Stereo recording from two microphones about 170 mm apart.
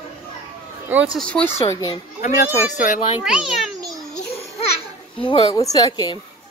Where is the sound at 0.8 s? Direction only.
10° right (ahead or behind).